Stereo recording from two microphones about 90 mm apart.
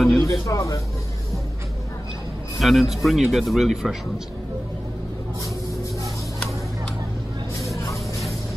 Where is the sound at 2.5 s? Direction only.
Centre (ahead or behind).